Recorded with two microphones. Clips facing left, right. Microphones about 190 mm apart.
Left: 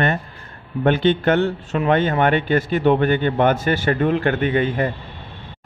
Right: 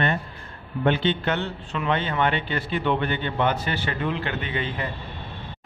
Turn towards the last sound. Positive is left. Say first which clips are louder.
# left 10 dB
turn(degrees=45)  # may be behind; listen again after turning